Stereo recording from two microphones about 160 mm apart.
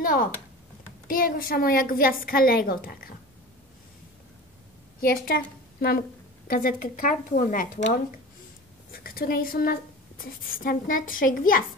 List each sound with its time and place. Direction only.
0.0 s a woman's voice: 60° left (ahead or behind)
5.0 s a woman's voice: 65° left (ahead or behind)
8.9 s a woman's voice: 65° left (ahead or behind)